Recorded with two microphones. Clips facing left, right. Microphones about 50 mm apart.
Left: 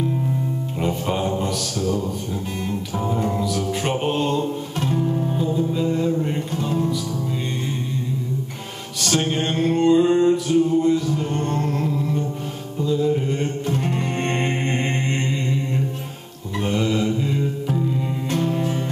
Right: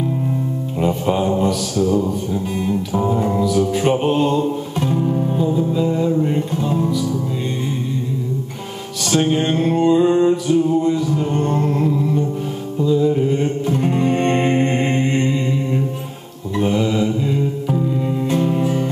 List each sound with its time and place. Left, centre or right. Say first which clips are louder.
0.7 s music: right 6 dB; centre
2.6 s music: right 6 dB; centre
9.0 s music: right 5 dB; centre
13.7 s music: right 4 dB; centre
13.9 s mantra: right 7 dB; centre
18.3 s music: right 3 dB; centre